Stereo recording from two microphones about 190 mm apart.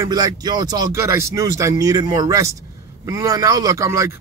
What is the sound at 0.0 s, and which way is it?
Speech, 20° right (ahead or behind).